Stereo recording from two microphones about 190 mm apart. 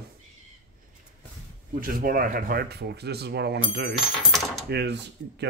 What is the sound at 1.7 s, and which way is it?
Speech, 50° right (ahead or behind).